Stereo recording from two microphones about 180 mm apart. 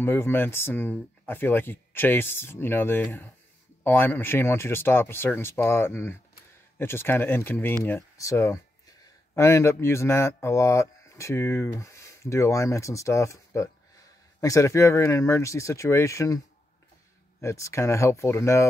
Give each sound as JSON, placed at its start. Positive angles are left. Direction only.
{"t": 0.0, "sound": "speech", "side_deg": 10}
{"t": 17.4, "sound": "speech", "side_deg": 15}